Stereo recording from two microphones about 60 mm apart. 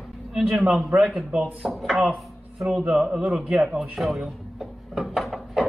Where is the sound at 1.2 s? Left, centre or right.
Right.